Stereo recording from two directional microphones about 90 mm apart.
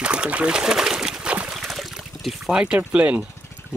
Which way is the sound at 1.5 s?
Centre (ahead or behind).